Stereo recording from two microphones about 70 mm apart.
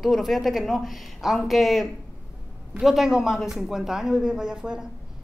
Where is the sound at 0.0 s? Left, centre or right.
Centre.